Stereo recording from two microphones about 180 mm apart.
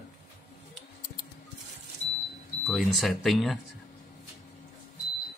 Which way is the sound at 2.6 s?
Centre (ahead or behind).